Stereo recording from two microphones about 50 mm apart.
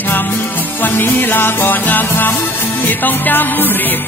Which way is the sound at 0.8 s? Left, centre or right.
Left.